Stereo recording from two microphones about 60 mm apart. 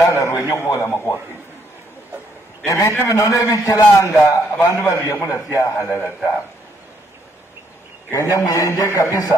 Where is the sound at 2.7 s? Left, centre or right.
Left.